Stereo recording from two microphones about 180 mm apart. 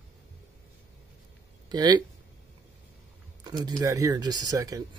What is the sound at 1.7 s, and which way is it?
Speech, 25° right (ahead or behind).